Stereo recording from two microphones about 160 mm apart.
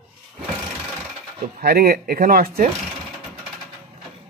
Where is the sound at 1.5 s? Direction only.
70° right (ahead or behind).